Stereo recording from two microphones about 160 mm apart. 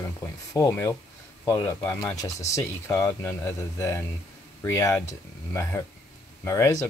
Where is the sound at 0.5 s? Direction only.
15° left (ahead or behind).